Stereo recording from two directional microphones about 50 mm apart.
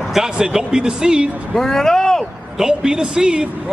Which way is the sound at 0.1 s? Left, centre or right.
Centre.